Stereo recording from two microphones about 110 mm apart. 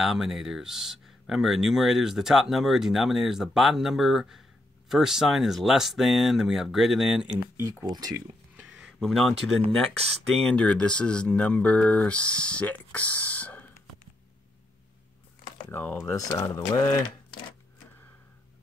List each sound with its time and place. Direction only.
0.0 s speech: 5° right (ahead or behind)
7.8 s speech: 35° right (ahead or behind)
8.7 s speech: centre (ahead or behind)
15.7 s speech: 15° left (ahead or behind)
16.1 s speech: 30° left (ahead or behind)
16.7 s speech: 40° left (ahead or behind)